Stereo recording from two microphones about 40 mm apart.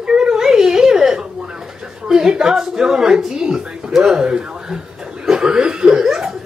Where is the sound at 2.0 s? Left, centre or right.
Centre.